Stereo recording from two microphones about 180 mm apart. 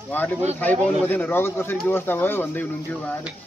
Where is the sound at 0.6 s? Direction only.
10° left (ahead or behind).